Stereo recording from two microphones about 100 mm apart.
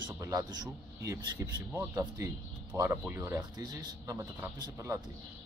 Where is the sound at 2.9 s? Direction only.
15° right (ahead or behind).